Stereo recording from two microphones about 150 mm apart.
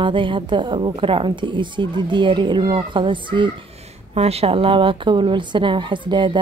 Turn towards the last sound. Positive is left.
turn(degrees=-30)  # may be behind; listen again after turning